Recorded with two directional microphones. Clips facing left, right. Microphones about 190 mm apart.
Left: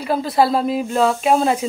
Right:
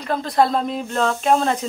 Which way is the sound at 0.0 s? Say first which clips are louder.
Left 2 dB; 5° left (ahead or behind).